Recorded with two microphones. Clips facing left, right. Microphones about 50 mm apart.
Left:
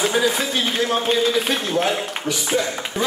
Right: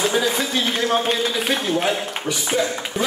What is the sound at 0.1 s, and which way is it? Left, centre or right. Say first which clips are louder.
Speech: left 1 dB; centre.